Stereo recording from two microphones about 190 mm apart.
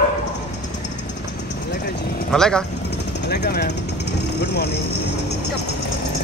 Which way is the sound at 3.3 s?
60° left (ahead or behind).